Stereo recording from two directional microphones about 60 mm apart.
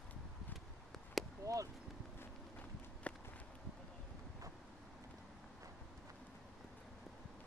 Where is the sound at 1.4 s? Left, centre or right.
Right.